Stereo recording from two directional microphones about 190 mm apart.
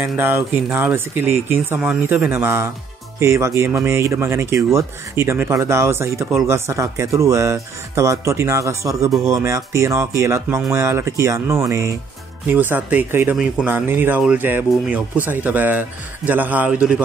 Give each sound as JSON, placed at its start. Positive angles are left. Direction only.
{"t": 0.0, "sound": "speech", "side_deg": -10}